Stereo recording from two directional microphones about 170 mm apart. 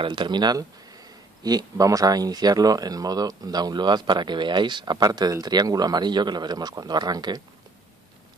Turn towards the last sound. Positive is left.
turn(degrees=-25)  # may be behind; listen again after turning